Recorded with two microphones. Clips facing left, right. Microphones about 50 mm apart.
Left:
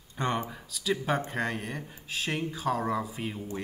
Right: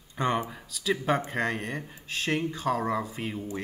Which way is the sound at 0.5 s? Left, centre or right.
Centre.